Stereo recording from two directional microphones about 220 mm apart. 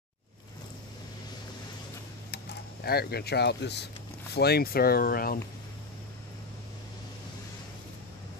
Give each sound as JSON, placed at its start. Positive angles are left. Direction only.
{"t": 2.3, "sound": "speech", "side_deg": 45}